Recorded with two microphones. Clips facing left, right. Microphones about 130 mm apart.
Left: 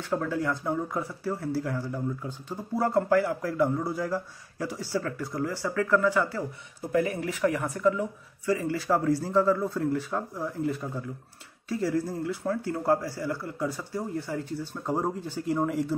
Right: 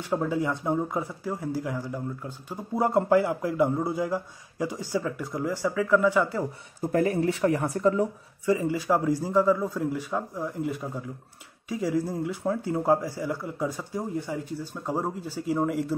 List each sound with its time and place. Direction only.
0.0 s speech: 15° right (ahead or behind)
1.8 s speech: 5° right (ahead or behind)
2.5 s a man's voice: 20° right (ahead or behind)
6.8 s speech: 45° right (ahead or behind)
7.1 s speech: 30° right (ahead or behind)
8.5 s speech: 20° right (ahead or behind); by 15.9 s centre (ahead or behind)